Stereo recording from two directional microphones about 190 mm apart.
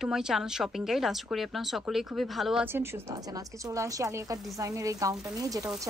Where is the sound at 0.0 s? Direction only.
Centre (ahead or behind).